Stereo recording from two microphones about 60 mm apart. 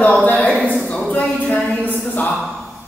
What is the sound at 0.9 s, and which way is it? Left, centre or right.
Speech, centre.